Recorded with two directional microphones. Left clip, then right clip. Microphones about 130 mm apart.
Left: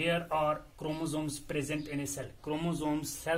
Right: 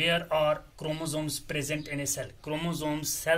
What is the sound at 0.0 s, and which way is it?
Speech, 15° left (ahead or behind).